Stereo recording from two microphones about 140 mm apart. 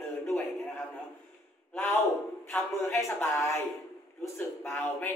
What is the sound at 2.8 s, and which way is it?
Speech, 20° left (ahead or behind).